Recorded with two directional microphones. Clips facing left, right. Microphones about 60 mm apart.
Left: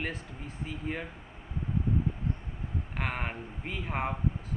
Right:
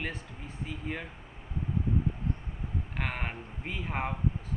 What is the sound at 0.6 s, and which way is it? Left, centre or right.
Speech, centre.